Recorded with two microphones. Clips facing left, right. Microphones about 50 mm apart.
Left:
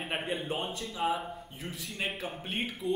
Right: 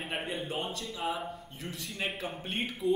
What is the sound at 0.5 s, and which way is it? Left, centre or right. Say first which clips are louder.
Speech: left 1 dB; left.